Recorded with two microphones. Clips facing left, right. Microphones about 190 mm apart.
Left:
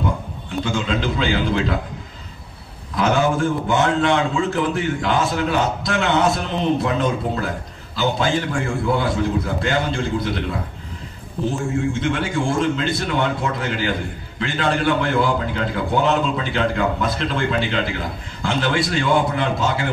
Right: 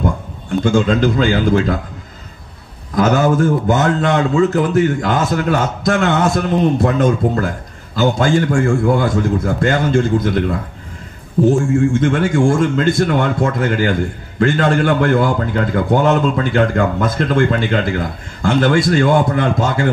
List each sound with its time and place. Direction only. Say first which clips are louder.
0.7 s a man's voice: right 9 dB; 45° right (ahead or behind)
3.0 s a man's voice: right 5 dB; 40° right (ahead or behind)